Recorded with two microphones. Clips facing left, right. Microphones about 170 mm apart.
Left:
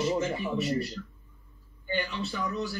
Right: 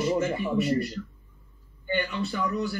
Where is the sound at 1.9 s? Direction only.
55° right (ahead or behind).